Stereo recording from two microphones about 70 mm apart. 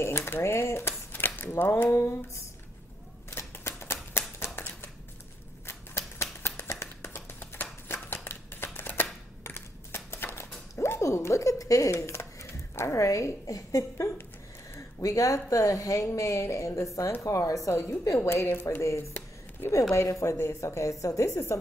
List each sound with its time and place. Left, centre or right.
0.0 s speech: left
3.3 s typewriter: left
4.6 s a sound: left
5.7 s typewriter: left
6.4 s shuffling cards: left
8.7 s typewriter: left
9.4 s a sound: left
12.1 s a woman's voice: left
18.3 s speech: left
18.8 s a woman's voice: left